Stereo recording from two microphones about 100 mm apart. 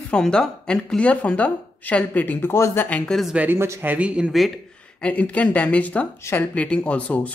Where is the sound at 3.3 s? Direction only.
20° right (ahead or behind).